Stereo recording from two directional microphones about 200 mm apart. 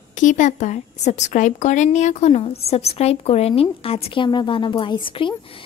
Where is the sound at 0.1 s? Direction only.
40° left (ahead or behind).